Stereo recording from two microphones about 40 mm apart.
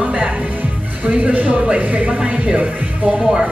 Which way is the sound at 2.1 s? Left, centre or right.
Right.